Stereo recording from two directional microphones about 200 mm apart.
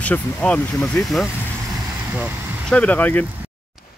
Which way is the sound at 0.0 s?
5° left (ahead or behind).